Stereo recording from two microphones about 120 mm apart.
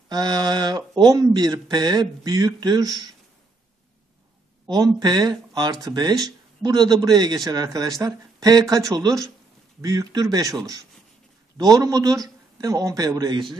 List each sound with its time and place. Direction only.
0.1 s speech: 35° right (ahead or behind)
4.6 s speech: 35° right (ahead or behind)